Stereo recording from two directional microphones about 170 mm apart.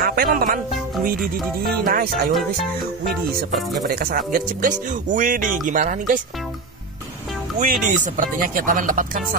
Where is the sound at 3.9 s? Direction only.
60° right (ahead or behind).